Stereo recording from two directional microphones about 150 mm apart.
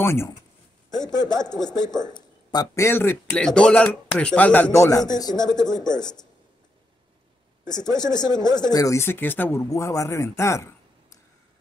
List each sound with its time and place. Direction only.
0.0 s speech: 15° left (ahead or behind)
0.8 s a man's voice: 25° left (ahead or behind); by 4.7 s 10° left (ahead or behind)
4.7 s speech: 20° left (ahead or behind)
7.8 s speech: 5° left (ahead or behind)
8.1 s speech: 25° left (ahead or behind)